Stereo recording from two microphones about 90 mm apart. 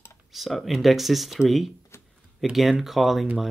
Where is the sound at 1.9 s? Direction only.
30° left (ahead or behind).